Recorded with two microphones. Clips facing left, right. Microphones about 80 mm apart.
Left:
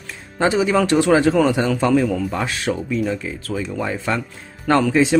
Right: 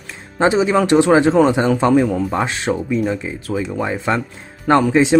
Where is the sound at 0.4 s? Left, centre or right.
Right.